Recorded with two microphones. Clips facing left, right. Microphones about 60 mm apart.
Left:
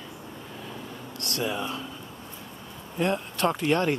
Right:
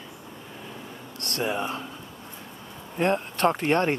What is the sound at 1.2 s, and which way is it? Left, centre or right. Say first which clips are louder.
Speech: right 2 dB; right.